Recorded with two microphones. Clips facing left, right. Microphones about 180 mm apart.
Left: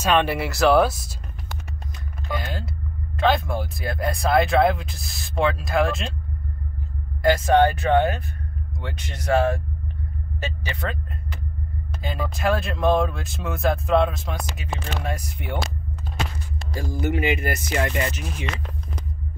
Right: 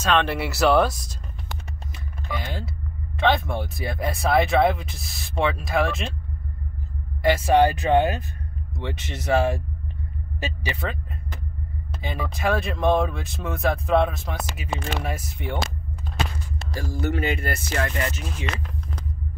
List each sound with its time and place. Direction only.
0.0 s speech: 10° left (ahead or behind)
0.4 s speech: centre (ahead or behind)
2.2 s speech: centre (ahead or behind)
7.2 s speech: 10° right (ahead or behind)
8.8 s speech: 5° right (ahead or behind)
10.6 s speech: 5° right (ahead or behind)
12.0 s speech: centre (ahead or behind)
16.8 s speech: 15° left (ahead or behind)